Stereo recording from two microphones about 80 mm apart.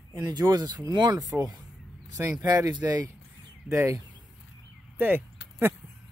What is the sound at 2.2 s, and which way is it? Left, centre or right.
Speech, right.